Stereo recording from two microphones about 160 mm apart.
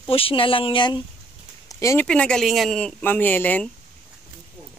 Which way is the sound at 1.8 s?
20° left (ahead or behind).